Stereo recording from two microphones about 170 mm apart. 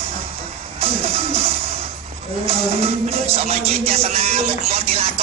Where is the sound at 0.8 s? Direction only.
35° right (ahead or behind).